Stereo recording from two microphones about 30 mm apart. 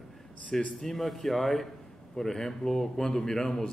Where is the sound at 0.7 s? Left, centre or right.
Centre.